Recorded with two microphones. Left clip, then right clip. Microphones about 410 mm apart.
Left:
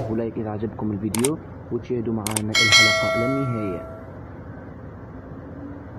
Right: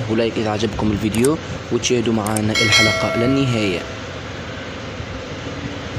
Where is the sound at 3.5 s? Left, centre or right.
Left.